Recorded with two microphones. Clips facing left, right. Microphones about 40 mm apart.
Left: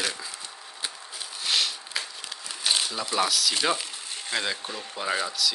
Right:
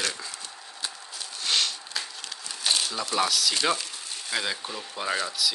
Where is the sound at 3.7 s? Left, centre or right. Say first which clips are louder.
Left 1 dB; centre.